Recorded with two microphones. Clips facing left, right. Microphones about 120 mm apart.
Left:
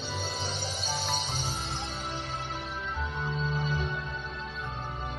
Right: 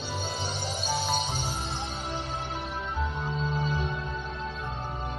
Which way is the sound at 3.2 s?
35° right (ahead or behind).